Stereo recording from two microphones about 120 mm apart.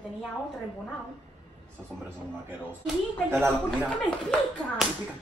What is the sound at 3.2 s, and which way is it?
Speech, 20° right (ahead or behind).